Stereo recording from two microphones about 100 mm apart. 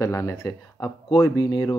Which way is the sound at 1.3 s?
55° left (ahead or behind).